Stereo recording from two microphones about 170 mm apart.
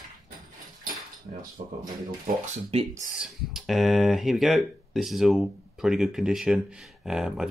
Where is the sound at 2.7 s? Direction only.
35° right (ahead or behind).